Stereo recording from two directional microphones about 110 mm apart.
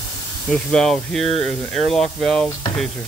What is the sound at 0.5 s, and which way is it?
Speech, 5° left (ahead or behind).